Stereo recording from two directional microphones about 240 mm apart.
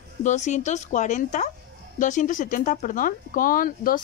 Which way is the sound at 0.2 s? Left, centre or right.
Left.